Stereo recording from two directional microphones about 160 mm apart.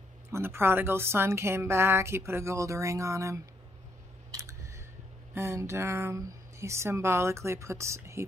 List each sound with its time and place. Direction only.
0.3 s speech: 15° right (ahead or behind)
4.3 s a sound: 20° right (ahead or behind)
5.3 s speech: 15° right (ahead or behind)